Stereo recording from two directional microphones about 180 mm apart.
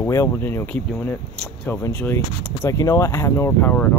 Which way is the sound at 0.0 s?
15° left (ahead or behind).